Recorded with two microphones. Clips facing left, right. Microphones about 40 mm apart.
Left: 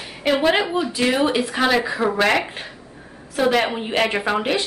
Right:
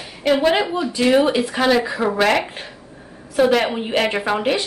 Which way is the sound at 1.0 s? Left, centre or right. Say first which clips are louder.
Right 6 dB; centre.